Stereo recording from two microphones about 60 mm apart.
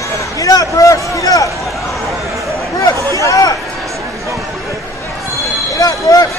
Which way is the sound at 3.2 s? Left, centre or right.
Left.